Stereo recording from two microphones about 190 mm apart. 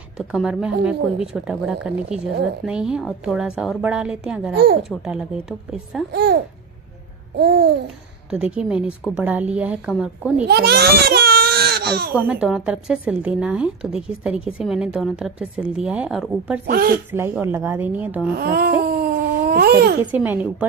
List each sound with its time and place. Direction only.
0.3 s a woman's voice: 5° right (ahead or behind)
7.3 s babbling: 60° right (ahead or behind)
8.3 s a woman's voice: 5° right (ahead or behind)
10.4 s speech: 55° right (ahead or behind)
12.1 s a woman's voice: 10° right (ahead or behind)
16.6 s speech: 50° right (ahead or behind)
17.1 s a woman's voice: 10° right (ahead or behind)
18.3 s speech: 55° right (ahead or behind)
20.1 s a woman's voice: 10° right (ahead or behind)